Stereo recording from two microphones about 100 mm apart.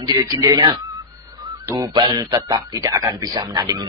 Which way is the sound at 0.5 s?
50° right (ahead or behind).